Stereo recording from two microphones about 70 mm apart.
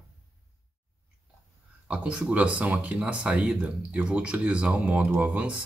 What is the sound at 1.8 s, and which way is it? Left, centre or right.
Speech, centre.